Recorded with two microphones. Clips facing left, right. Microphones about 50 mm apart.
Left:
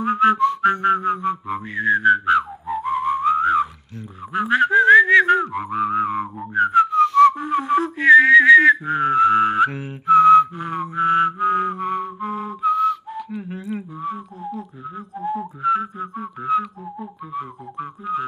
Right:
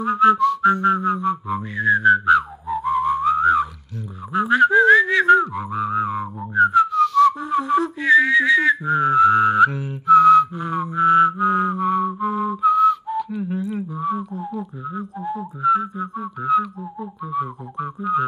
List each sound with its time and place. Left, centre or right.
0.0 s whistling: left
4.3 s music: left
4.6 s whistling: centre
8.0 s whistling: left; by 13.2 s centre
13.3 s a sound: centre
14.4 s music: centre
15.2 s whistling: left
17.0 s music: centre